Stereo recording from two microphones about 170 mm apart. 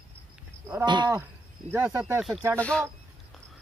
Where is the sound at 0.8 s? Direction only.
25° right (ahead or behind).